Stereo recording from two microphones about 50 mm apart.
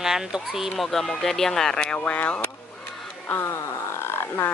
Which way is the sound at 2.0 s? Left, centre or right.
Left.